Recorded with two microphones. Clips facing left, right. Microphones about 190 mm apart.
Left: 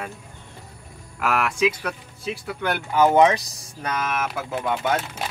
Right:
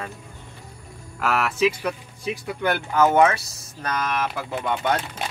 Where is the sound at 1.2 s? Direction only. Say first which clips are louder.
Even; centre (ahead or behind).